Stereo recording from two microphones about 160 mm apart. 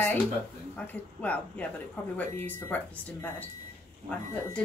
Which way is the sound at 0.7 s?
10° left (ahead or behind).